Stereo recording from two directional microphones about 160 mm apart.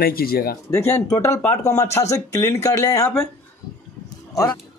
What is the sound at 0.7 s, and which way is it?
Speech, 20° left (ahead or behind).